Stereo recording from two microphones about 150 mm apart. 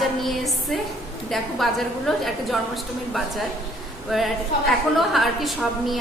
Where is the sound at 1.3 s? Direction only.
Centre (ahead or behind).